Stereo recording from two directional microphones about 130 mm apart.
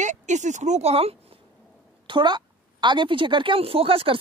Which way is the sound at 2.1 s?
35° right (ahead or behind).